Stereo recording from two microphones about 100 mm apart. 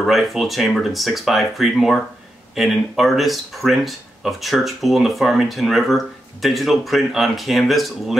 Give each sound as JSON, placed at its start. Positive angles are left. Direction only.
{"t": 0.0, "sound": "speech", "side_deg": 0}